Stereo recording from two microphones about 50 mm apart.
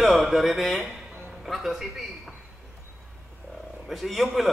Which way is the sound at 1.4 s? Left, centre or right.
Centre.